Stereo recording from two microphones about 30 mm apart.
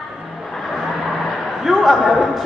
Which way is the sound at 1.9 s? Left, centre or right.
Centre.